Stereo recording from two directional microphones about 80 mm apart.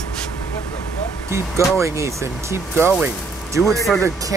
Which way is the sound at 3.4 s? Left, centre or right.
Right.